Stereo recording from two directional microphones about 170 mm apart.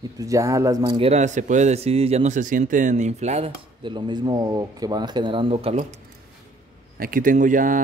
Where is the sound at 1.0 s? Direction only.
40° right (ahead or behind).